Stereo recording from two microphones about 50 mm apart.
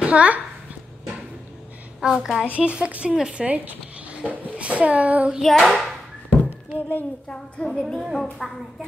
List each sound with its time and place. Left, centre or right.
0.0 s a child's voice: right
2.0 s a child's voice: centre
2.4 s a child's voice: right
3.1 s a child's voice: centre
3.3 s zipper: right
4.3 s a child's voice: right
5.4 s hands: centre
6.4 s a sound: left
7.8 s hands: centre